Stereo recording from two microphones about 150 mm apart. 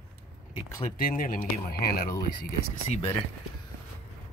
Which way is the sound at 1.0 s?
70° left (ahead or behind).